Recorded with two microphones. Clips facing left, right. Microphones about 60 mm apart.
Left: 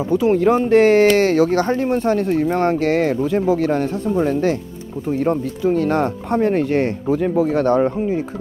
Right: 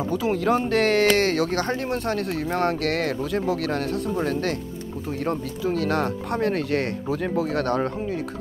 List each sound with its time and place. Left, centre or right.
0.1 s speech: centre
7.6 s speech: centre